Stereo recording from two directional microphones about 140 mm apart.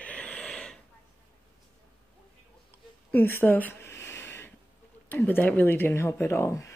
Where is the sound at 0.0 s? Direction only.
10° left (ahead or behind).